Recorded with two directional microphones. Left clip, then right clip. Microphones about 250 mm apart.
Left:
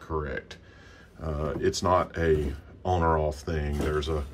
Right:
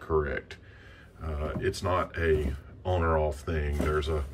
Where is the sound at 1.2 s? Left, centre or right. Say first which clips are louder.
Left 4 dB; centre.